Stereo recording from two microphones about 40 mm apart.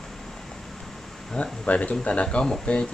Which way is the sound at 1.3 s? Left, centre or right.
Left.